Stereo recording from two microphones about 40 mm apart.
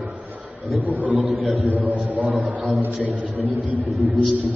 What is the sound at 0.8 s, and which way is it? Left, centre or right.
Speech, right.